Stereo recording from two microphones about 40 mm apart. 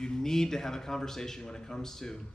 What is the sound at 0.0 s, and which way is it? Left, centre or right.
A man's voice, centre.